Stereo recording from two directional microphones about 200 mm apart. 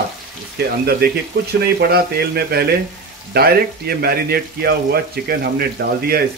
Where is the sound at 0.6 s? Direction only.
55° right (ahead or behind).